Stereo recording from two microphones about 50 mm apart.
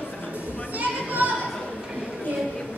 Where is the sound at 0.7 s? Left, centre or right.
Right.